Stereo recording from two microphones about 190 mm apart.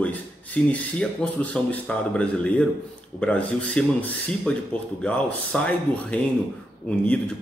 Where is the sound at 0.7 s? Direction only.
5° left (ahead or behind).